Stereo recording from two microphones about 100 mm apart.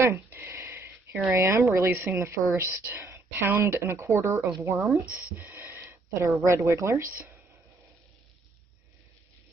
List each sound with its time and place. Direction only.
0.0 s a sound: 25° right (ahead or behind)
1.3 s speech: 30° right (ahead or behind)
5.1 s speech: 20° right (ahead or behind)